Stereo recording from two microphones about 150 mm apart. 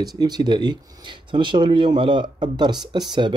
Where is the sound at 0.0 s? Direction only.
25° right (ahead or behind).